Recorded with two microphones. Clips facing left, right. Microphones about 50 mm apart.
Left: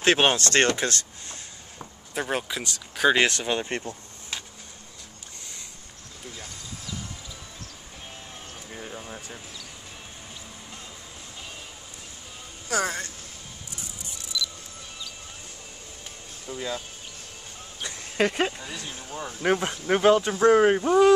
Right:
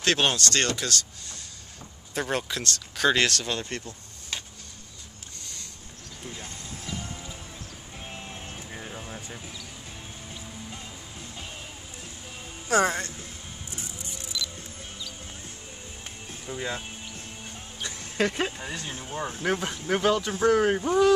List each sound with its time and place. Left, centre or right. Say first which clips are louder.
0.0 s speech: left 3 dB; left
2.1 s speech: even; centre; by 4.4 s left
6.3 s a sound: right 1 dB; right
8.6 s a sound: left 4 dB; centre
12.6 s speech: right 4 dB; right
14.3 s music: left 3 dB; right
16.4 s speech: even; centre
17.8 s a sound: left 2 dB; centre
18.6 s speech: right 2 dB; right
19.4 s speech: left 5 dB; left
20.7 s speech: left 3 dB; centre